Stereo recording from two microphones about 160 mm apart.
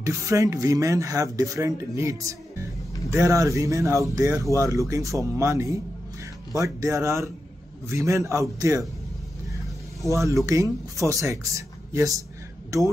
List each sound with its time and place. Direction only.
0.0 s speech: 20° right (ahead or behind)
10.0 s speech: 20° right (ahead or behind)